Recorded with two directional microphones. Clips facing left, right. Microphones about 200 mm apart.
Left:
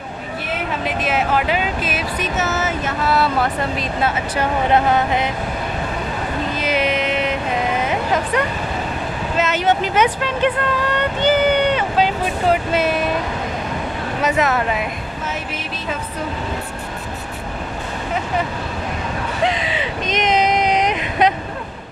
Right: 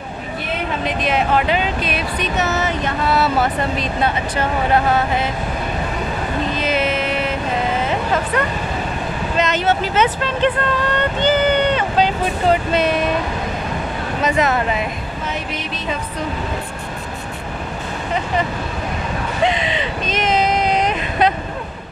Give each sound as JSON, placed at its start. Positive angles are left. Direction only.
{"t": 0.8, "sound": "speech", "side_deg": 5}
{"t": 4.4, "sound": "speech", "side_deg": 20}
{"t": 6.5, "sound": "vehicle", "side_deg": 10}
{"t": 9.4, "sound": "speech", "side_deg": 10}
{"t": 14.2, "sound": "speech", "side_deg": 0}
{"t": 19.4, "sound": "a sound", "side_deg": 0}